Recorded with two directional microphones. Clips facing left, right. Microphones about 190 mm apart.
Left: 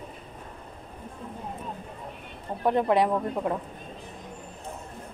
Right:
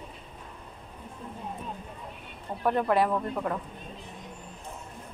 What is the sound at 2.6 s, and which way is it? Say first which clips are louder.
Speech: left 2 dB; 20° left (ahead or behind).